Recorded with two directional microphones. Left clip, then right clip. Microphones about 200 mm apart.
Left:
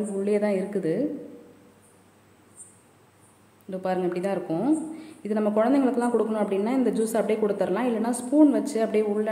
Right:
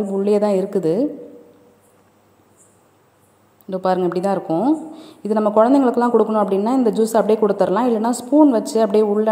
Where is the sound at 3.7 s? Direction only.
30° right (ahead or behind).